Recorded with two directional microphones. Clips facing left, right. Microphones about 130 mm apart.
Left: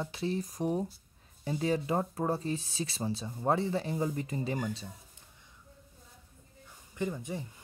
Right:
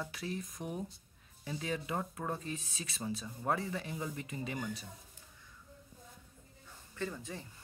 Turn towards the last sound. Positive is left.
turn(degrees=15)  # may be behind; listen again after turning